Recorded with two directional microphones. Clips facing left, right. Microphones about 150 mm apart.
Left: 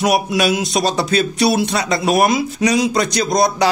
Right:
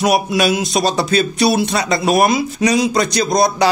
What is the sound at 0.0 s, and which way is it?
Speech, 35° right (ahead or behind).